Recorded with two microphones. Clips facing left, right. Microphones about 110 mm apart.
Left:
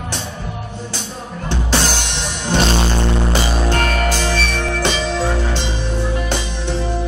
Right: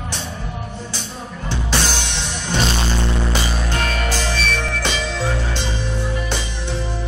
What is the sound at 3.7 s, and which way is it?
Music, 45° left (ahead or behind).